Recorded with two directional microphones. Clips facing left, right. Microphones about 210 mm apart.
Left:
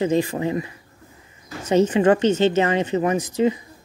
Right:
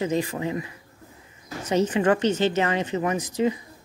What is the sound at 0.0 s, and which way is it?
Speech, 30° left (ahead or behind).